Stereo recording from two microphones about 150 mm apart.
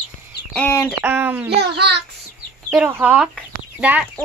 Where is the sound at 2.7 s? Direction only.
10° right (ahead or behind).